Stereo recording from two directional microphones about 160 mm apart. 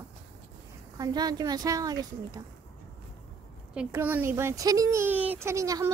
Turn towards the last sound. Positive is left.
turn(degrees=-20)  # may be behind; listen again after turning